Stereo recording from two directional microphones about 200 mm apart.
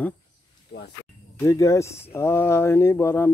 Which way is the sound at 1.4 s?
15° left (ahead or behind).